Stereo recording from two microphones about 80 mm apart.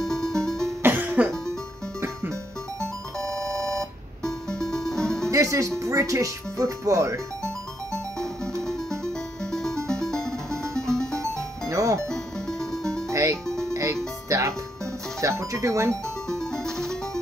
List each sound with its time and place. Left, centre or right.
0.0 s music: centre
0.8 s music: right
3.2 s music: right
4.2 s music: centre
5.3 s speech: right
8.6 s music: centre
11.7 s music: right
12.1 s music: centre
13.1 s music: right
13.5 s music: centre
14.3 s music: right
15.1 s speech: right
15.9 s music: centre